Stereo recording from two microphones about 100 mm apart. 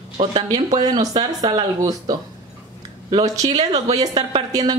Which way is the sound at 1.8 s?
35° right (ahead or behind).